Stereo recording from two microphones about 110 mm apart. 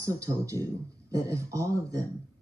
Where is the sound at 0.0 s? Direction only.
30° right (ahead or behind).